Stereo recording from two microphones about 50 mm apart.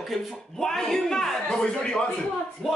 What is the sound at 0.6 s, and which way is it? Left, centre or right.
Speech, centre.